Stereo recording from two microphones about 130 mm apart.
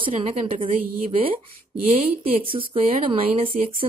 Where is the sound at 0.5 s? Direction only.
90° right.